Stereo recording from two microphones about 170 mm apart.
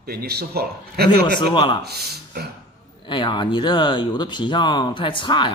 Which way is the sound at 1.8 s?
70° right (ahead or behind).